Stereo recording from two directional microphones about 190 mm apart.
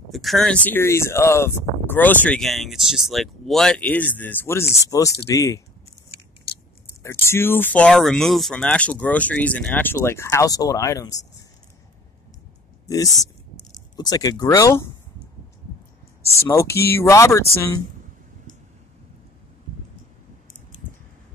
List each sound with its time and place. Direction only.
0.1 s speech: centre (ahead or behind); by 5.6 s 15° left (ahead or behind)
7.0 s speech: 15° left (ahead or behind)
12.8 s speech: 20° left (ahead or behind)
16.4 s speech: 15° left (ahead or behind)